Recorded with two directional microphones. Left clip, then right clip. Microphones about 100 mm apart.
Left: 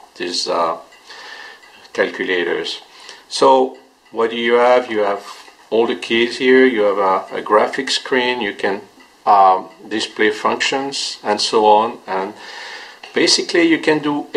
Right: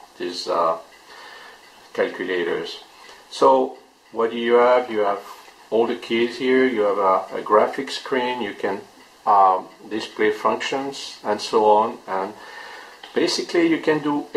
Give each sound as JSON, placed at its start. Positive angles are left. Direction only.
{"t": 0.3, "sound": "speech", "side_deg": 30}
{"t": 1.9, "sound": "speech", "side_deg": 30}
{"t": 4.1, "sound": "speech", "side_deg": 35}